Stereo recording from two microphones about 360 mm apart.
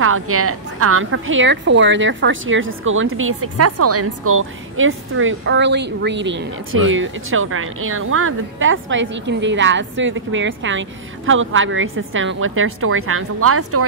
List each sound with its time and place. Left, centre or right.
0.0 s a woman's voice: right